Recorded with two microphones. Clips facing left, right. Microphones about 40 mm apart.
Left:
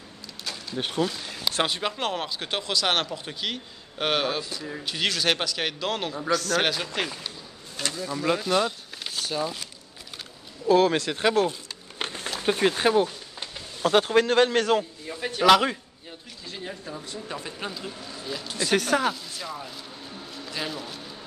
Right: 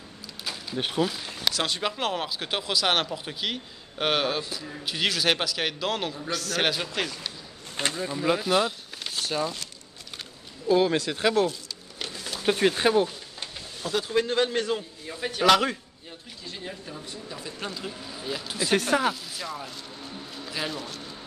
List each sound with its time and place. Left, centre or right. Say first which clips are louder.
0.5 s speech: right 1 dB; centre
7.7 s a sound: right 2 dB; right
8.2 s speech: even; centre
9.0 s a sound: even; centre
11.0 s speech: left 1 dB; centre
12.0 s a sound: left 4 dB; left
12.4 s speech: even; centre
13.9 s a man's voice: left 5 dB; left
15.0 s speech: left 2 dB; centre
17.0 s a man's voice: left 4 dB; left
17.6 s speech: left 1 dB; centre
17.8 s speech: right 1 dB; centre